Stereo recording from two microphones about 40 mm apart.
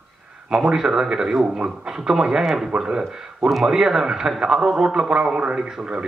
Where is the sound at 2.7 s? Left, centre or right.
Right.